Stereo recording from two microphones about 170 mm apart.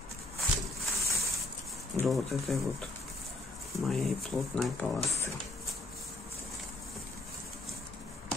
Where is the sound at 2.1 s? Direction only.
Centre (ahead or behind).